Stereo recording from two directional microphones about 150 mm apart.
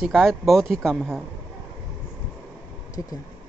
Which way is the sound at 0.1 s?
Centre (ahead or behind).